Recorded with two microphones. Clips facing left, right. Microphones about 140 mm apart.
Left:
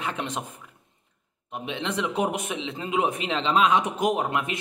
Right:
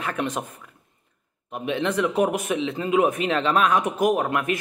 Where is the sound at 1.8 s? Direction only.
20° left (ahead or behind).